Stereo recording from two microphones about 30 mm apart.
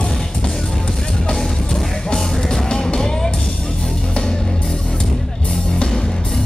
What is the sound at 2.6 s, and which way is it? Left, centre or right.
Music, left.